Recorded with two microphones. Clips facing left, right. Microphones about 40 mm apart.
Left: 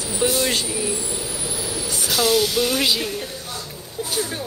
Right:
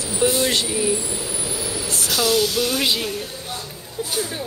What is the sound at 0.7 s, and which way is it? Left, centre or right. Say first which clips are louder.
Speech: right 3 dB; centre.